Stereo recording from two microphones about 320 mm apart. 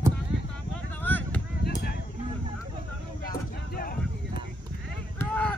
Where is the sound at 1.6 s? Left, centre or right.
Left.